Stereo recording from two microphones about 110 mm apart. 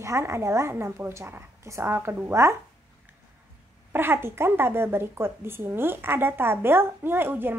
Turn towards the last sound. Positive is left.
turn(degrees=-20)  # may be behind; listen again after turning